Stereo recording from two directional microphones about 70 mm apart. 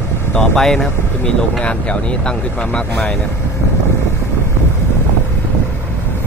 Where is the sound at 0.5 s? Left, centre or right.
Centre.